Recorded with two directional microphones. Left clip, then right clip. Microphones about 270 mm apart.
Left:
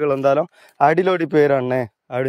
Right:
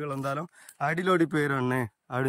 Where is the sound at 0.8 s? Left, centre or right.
Left.